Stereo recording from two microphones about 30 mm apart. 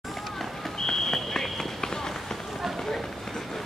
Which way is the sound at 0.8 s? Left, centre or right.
Centre.